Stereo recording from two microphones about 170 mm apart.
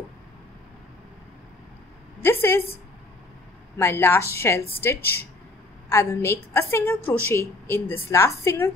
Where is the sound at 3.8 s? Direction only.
15° left (ahead or behind).